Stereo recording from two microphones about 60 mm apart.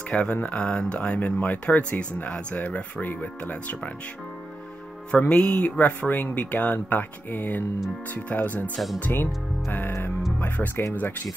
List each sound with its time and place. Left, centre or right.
0.1 s speech: centre
5.3 s speech: centre